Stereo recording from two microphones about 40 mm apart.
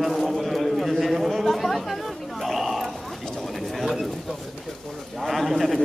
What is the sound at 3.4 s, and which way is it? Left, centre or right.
Bird, centre.